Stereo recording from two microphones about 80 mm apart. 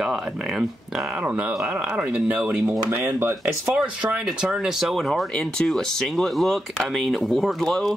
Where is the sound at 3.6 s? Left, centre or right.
Centre.